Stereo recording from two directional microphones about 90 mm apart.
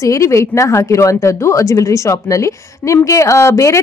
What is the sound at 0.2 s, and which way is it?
Speech, 35° left (ahead or behind).